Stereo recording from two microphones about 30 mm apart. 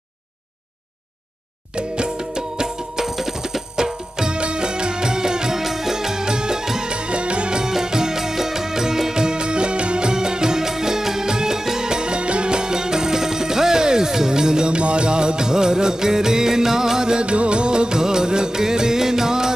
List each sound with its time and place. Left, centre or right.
1.8 s music: right; by 3.6 s centre
3.7 s music: right
5.6 s music: centre; by 6.6 s right
6.6 s music: centre
6.9 s music: right
7.6 s music: right
17.2 s music: right; by 19.5 s centre